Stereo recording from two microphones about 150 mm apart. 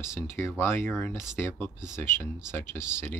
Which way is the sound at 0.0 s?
20° left (ahead or behind).